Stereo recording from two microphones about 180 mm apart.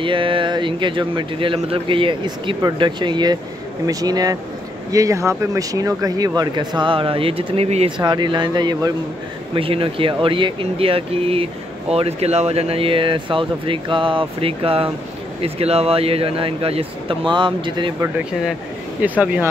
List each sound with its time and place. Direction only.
0.0 s speech: 30° right (ahead or behind)
8.0 s speech: 25° right (ahead or behind)
19.0 s speech: 10° right (ahead or behind)